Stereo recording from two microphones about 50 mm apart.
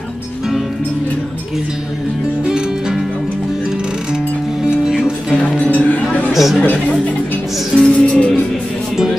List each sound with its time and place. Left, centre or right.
4.6 s music: centre
5.4 s music: left
6.3 s speech: centre
6.6 s a woman's voice: left
7.7 s music: left